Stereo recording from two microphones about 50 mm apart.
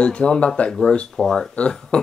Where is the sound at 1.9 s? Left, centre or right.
Centre.